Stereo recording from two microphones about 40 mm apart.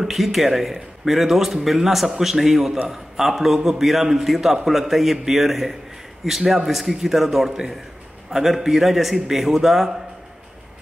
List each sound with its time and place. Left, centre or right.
0.0 s a man's voice: centre